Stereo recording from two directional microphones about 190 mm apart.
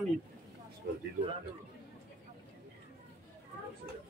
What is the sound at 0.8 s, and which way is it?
Speech, 60° right (ahead or behind).